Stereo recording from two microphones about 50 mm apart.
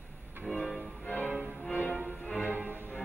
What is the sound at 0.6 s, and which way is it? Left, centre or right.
Music, centre.